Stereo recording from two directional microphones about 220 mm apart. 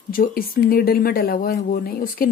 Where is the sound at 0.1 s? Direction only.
40° left (ahead or behind).